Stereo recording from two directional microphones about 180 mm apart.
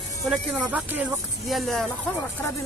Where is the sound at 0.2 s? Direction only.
Centre (ahead or behind).